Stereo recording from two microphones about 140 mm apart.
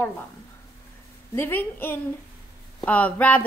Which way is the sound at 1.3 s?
15° left (ahead or behind).